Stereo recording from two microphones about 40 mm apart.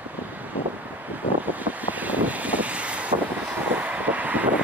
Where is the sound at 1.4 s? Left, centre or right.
Right.